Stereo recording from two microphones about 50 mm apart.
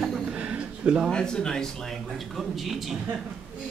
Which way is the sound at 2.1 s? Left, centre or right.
Centre.